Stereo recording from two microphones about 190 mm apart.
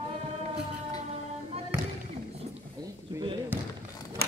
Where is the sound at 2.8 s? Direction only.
20° right (ahead or behind).